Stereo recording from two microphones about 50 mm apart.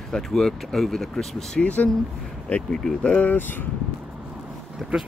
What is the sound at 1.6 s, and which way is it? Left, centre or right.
Speech, left.